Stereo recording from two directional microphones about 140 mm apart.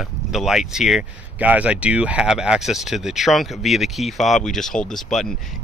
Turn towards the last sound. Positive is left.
turn(degrees=0)  # may be behind; listen again after turning